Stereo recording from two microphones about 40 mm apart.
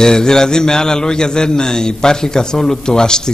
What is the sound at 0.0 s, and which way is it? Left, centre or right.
A man's voice, centre.